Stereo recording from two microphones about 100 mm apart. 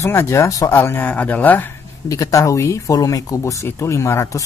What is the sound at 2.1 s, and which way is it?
Speech, 35° left (ahead or behind).